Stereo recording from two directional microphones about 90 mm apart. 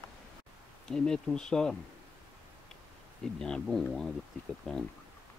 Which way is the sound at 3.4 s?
5° left (ahead or behind).